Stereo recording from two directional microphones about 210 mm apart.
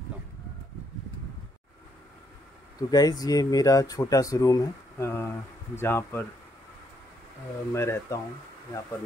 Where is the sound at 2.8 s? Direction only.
20° left (ahead or behind).